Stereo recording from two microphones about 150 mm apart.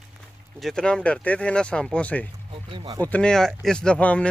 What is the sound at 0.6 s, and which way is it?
Speech, 5° left (ahead or behind).